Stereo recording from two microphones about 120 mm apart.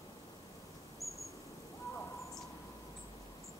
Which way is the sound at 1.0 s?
25° right (ahead or behind).